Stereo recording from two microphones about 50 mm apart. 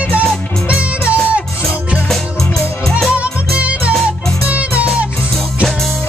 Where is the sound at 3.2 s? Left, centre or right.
Right.